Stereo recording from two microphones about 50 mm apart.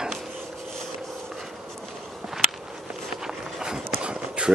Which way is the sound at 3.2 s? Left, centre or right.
Centre.